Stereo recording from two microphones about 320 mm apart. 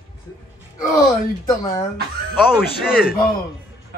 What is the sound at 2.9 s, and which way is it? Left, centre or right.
Speech, left.